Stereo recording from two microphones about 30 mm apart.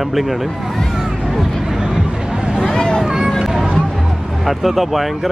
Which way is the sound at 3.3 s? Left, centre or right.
Centre.